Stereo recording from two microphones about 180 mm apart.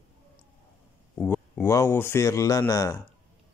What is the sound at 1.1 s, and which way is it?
Speech, 5° left (ahead or behind).